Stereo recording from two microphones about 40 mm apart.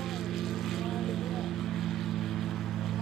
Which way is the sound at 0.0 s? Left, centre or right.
Centre.